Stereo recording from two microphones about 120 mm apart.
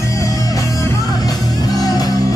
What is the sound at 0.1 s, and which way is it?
Music, 25° left (ahead or behind).